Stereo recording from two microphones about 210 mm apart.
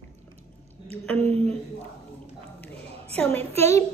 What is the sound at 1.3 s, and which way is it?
Speech, 30° right (ahead or behind).